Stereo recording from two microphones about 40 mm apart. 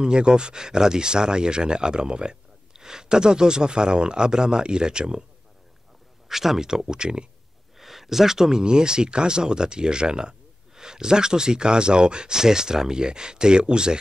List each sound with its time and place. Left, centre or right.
0.0 s speech: right
6.2 s speech: centre
7.7 s speech: centre